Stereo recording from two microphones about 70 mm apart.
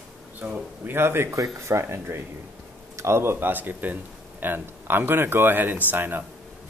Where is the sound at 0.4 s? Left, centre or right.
Right.